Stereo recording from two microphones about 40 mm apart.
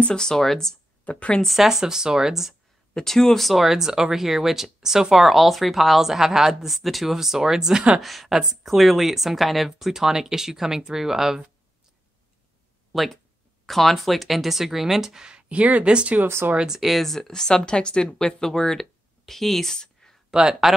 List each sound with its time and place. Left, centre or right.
0.1 s speech: centre
1.0 s speech: left
1.4 s speech: centre
1.7 s speech: centre
2.9 s speech: centre
3.3 s speech: centre
3.6 s speech: centre
5.2 s speech: centre
8.0 s speech: centre
12.9 s speech: centre
15.4 s speech: right
16.8 s speech: centre
20.2 s speech: centre